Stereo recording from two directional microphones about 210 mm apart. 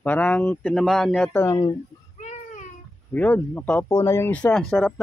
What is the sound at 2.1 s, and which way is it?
Baby cry, 35° left (ahead or behind).